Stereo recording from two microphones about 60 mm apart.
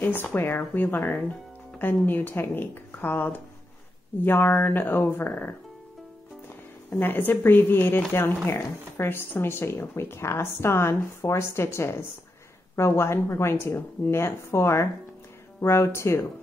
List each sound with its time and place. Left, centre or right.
0.0 s speech: left
6.9 s speech: left
13.7 s speech: left
14.2 s speech: left